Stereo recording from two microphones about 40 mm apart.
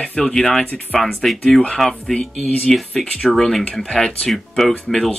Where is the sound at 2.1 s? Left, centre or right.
Left.